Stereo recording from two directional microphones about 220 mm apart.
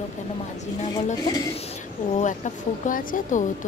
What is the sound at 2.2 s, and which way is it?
Speech, 35° left (ahead or behind).